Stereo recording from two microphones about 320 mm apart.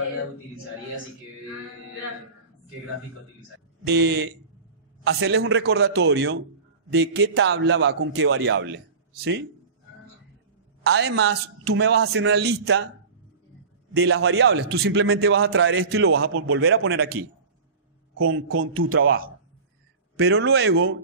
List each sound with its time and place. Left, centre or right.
3.9 s a man's voice: right
10.8 s a man's voice: right
13.9 s a man's voice: right
20.2 s a man's voice: right